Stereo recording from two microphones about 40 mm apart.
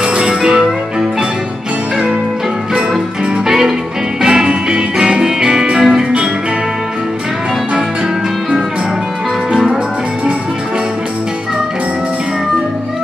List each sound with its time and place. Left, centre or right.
0.0 s music: right
3.4 s music: centre
4.2 s music: right
9.5 s music: centre